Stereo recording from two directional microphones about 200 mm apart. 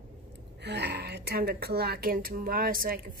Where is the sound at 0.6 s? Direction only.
55° right (ahead or behind).